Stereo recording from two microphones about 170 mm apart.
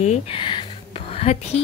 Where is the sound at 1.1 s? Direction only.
35° left (ahead or behind).